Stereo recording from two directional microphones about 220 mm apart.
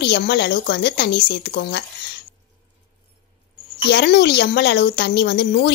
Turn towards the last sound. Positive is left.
turn(degrees=50)  # may be behind; listen again after turning